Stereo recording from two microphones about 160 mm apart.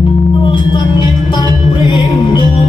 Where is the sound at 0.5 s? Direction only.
30° left (ahead or behind).